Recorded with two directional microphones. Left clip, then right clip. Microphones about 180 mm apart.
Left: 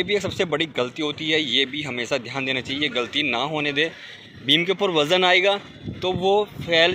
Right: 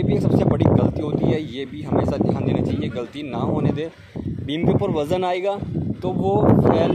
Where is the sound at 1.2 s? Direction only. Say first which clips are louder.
Left 3 dB; 50° right (ahead or behind).